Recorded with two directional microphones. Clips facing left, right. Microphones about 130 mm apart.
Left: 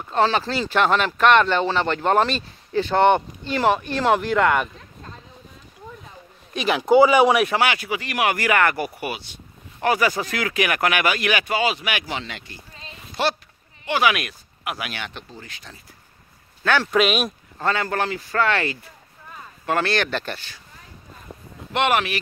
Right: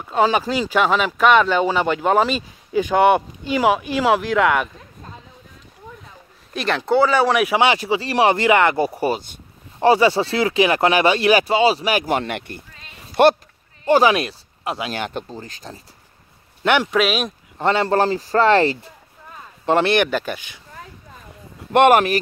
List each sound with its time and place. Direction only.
0.1 s speech: 10° right (ahead or behind)
6.5 s speech: centre (ahead or behind)
6.8 s speech: 15° left (ahead or behind)
7.6 s speech: 30° right (ahead or behind)
8.9 s speech: 35° right (ahead or behind); by 13.4 s 55° right (ahead or behind)
13.8 s speech: 35° right (ahead or behind)
15.0 s speech: 40° right (ahead or behind)
16.6 s speech: 20° right (ahead or behind)
16.9 s speech: centre (ahead or behind)
17.6 s speech: 25° right (ahead or behind)
20.1 s speech: 10° right (ahead or behind)
21.7 s speech: 45° right (ahead or behind)